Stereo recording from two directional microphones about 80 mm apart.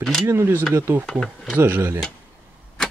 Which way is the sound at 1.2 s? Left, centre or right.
Centre.